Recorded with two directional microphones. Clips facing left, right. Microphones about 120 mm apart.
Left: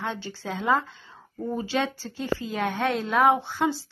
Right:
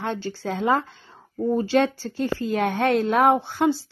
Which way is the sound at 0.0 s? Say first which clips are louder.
Right 4 dB; 55° right (ahead or behind).